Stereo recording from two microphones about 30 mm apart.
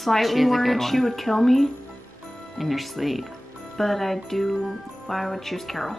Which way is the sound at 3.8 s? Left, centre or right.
Centre.